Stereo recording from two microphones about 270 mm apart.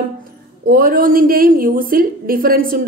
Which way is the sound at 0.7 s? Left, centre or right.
Right.